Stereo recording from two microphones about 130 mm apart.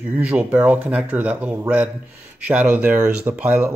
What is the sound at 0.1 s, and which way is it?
Speech, 10° right (ahead or behind).